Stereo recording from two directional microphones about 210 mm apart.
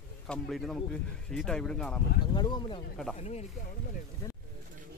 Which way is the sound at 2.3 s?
20° left (ahead or behind).